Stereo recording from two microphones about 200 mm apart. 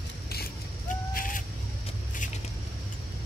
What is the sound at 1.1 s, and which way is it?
Bird, 45° left (ahead or behind).